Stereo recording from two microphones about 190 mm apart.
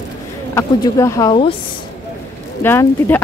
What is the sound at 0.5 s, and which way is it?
Speech, 15° left (ahead or behind).